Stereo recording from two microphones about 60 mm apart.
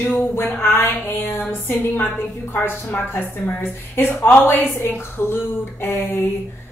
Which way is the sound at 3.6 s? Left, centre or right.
Left.